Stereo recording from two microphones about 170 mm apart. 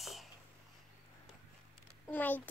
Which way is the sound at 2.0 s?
10° left (ahead or behind).